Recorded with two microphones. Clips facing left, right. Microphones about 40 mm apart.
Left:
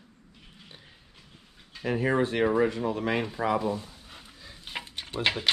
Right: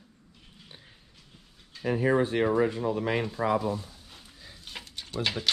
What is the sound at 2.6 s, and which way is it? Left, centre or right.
Speech, left.